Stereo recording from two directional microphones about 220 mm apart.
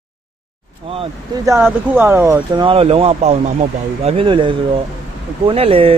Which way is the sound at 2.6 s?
25° right (ahead or behind).